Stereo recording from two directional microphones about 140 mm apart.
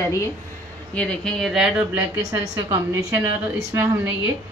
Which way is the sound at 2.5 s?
25° right (ahead or behind).